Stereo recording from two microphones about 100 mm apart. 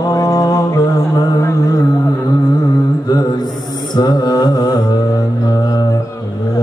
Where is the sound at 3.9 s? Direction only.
45° left (ahead or behind).